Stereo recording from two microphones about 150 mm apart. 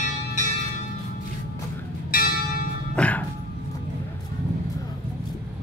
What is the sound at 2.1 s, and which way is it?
Church bell, 70° left (ahead or behind).